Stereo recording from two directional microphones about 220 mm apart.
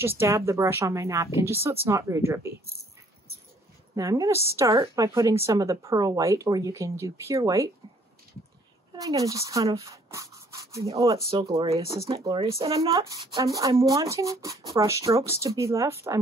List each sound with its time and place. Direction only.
0.0 s speech: 10° right (ahead or behind)
3.9 s speech: 15° right (ahead or behind)
8.9 s speech: 15° right (ahead or behind)